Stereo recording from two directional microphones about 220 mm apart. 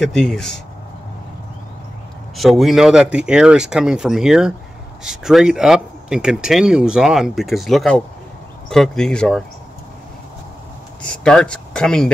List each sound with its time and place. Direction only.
0.0 s speech: centre (ahead or behind)
2.3 s speech: centre (ahead or behind)
11.1 s speech: 5° left (ahead or behind)